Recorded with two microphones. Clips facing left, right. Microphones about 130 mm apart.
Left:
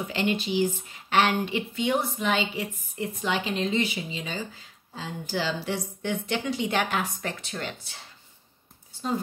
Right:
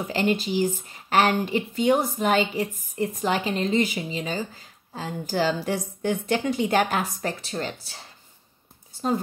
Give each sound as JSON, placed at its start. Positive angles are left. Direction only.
{"t": 0.1, "sound": "a woman's voice", "side_deg": -40}